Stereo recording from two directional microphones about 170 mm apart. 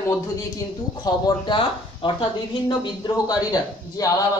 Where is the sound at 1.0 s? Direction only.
25° left (ahead or behind).